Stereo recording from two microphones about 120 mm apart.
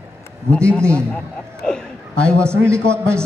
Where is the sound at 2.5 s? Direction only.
20° right (ahead or behind).